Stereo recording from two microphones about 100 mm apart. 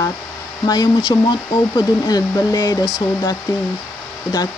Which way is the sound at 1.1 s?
45° left (ahead or behind).